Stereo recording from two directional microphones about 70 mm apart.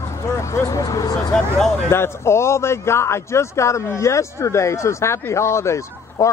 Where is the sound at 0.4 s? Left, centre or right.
Left.